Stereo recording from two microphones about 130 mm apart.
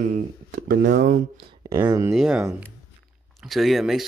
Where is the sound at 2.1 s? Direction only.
5° right (ahead or behind).